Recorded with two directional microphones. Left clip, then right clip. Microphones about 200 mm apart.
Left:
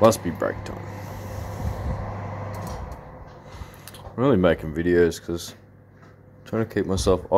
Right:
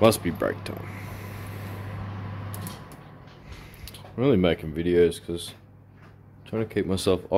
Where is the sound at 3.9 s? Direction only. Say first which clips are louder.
Left 2 dB; 10° right (ahead or behind).